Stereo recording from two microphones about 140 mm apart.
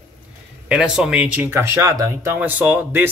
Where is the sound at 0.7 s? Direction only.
5° right (ahead or behind).